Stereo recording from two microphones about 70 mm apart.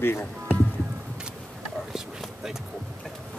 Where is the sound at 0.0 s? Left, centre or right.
Left.